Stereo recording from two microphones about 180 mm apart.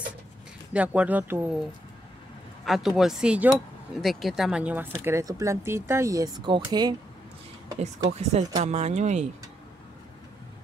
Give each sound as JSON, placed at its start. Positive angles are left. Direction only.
{"t": 0.7, "sound": "speech", "side_deg": -10}
{"t": 8.1, "sound": "speech", "side_deg": -40}